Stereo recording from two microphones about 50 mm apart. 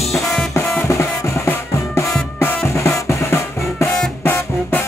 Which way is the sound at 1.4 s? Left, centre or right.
Left.